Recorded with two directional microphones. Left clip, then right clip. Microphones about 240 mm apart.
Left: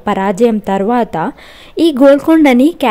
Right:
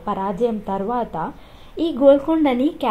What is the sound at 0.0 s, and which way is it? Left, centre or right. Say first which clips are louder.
A woman's voice: left 9 dB; left.